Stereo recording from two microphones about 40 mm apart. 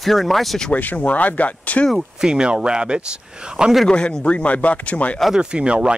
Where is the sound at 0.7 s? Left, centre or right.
Left.